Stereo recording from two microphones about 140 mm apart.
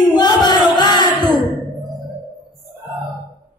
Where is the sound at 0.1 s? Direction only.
30° left (ahead or behind).